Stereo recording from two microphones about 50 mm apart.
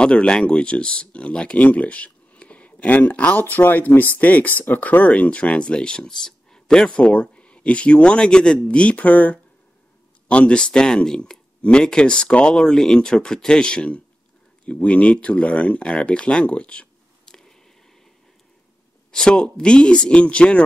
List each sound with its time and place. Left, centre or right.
0.0 s speech: centre
6.9 s speech: left
17.3 s squish: centre
19.1 s speech: centre